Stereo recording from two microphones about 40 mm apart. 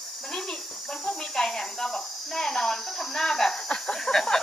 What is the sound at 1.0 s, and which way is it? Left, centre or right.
Speech, centre.